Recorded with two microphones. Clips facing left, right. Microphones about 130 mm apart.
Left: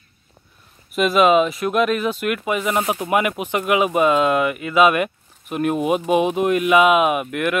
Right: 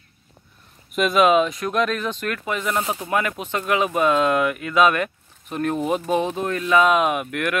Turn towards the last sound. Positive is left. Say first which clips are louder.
# left 3 dB
turn(degrees=5)  # may be behind; listen again after turning